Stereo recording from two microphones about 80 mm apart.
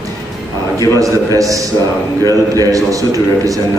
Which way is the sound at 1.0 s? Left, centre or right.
Right.